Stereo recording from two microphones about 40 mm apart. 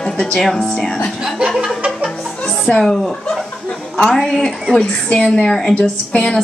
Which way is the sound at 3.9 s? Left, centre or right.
Centre.